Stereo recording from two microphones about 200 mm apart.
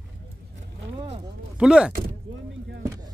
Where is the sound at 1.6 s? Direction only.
5° right (ahead or behind).